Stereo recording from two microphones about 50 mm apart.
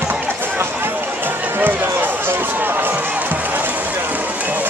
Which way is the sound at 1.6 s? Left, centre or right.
Right.